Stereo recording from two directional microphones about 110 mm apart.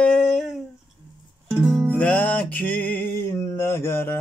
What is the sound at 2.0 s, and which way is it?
Music, 15° left (ahead or behind).